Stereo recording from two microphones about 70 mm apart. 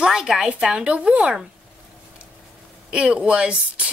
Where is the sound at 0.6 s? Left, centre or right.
Centre.